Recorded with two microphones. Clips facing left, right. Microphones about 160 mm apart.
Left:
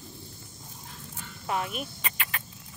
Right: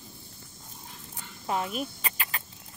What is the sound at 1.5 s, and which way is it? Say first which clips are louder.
Vehicle: right 1 dB; 30° right (ahead or behind).